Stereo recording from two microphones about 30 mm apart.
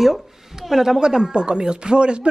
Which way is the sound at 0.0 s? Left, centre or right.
Centre.